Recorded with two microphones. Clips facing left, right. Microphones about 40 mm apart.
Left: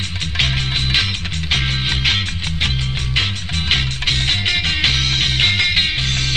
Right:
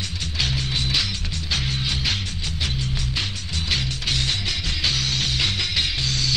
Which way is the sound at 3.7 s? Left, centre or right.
Left.